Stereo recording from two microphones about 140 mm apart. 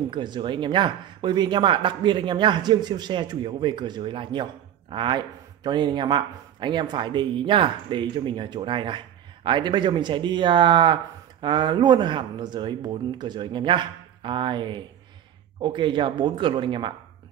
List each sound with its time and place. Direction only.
0.1 s speech: 35° right (ahead or behind)